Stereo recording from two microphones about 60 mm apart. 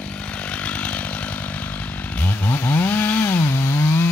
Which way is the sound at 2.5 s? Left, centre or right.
Left.